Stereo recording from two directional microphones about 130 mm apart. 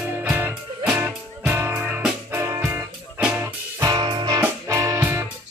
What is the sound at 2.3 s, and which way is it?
Music, 15° right (ahead or behind).